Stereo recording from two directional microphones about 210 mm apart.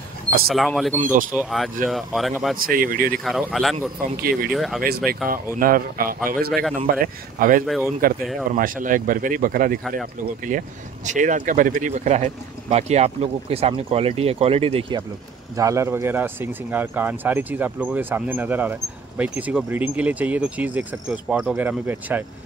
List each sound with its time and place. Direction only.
0.5 s speech: centre (ahead or behind)
2.5 s speech: 40° right (ahead or behind)
3.3 s speech: centre (ahead or behind)
4.2 s speech: 45° right (ahead or behind)
4.5 s speech: centre (ahead or behind)
4.8 s speech: 45° right (ahead or behind); by 22.2 s 10° right (ahead or behind)